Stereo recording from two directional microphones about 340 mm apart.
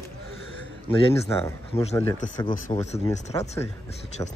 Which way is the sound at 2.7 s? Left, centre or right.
Centre.